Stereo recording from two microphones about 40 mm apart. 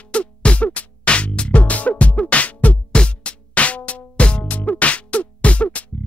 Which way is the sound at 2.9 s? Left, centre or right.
Left.